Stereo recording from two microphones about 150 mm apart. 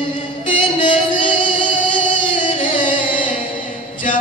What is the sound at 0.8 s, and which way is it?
Music, 60° left (ahead or behind).